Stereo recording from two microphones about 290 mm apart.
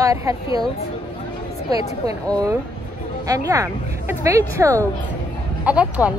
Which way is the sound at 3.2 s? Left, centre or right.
Centre.